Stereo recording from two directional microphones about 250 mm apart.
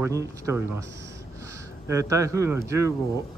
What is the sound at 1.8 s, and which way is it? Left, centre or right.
Speech, centre.